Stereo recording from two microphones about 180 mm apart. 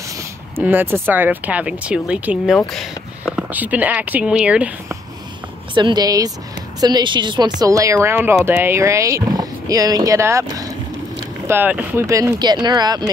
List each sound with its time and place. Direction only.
0.6 s speech: 10° right (ahead or behind)
5.8 s speech: 25° right (ahead or behind)